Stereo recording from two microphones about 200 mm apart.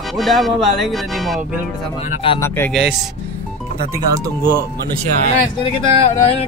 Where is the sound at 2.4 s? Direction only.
10° left (ahead or behind).